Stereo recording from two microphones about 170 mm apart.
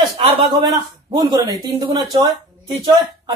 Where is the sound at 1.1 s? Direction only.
25° right (ahead or behind).